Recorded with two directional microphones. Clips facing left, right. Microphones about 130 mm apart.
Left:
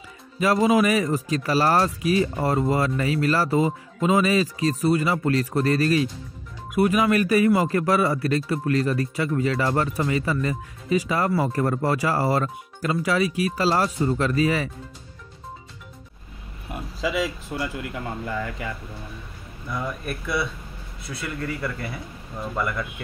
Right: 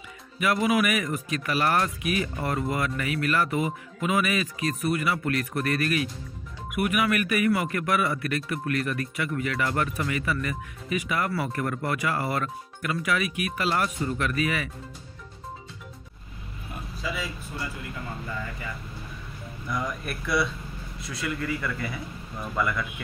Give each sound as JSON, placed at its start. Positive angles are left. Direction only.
{"t": 0.4, "sound": "speech", "side_deg": 30}
{"t": 16.7, "sound": "speech", "side_deg": 90}
{"t": 21.2, "sound": "speech", "side_deg": 35}